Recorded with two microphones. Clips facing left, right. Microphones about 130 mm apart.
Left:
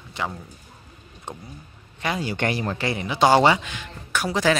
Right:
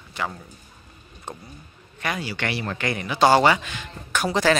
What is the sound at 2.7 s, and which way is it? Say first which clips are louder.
Speech: left 1 dB; 25° left (ahead or behind).